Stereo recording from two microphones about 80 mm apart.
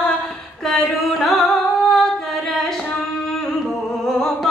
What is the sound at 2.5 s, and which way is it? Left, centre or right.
Singing, centre.